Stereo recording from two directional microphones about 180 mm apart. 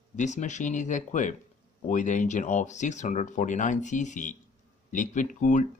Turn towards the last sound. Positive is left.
turn(degrees=45)  # may be behind; listen again after turning